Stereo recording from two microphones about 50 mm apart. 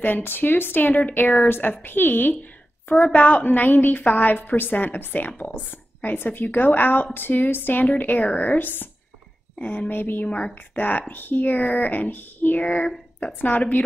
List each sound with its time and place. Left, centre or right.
0.0 s speech: left
2.9 s a woman's voice: left
8.5 s speech: left
9.6 s speech: left
10.2 s speech: left